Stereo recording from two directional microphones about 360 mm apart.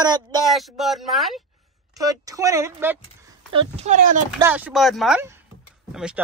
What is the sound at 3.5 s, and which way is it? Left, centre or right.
Speech, centre.